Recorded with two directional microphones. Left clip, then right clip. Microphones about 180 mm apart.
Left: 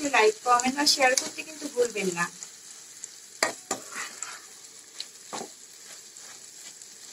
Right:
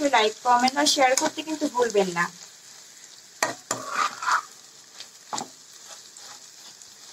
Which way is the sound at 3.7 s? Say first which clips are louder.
Right 9 dB; 30° right (ahead or behind).